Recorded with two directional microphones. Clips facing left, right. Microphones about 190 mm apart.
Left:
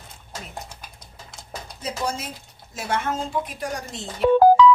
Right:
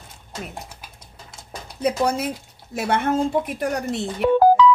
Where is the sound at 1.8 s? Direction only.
60° right (ahead or behind).